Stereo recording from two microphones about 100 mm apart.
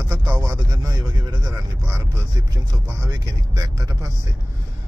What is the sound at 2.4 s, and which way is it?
Speech, 35° right (ahead or behind).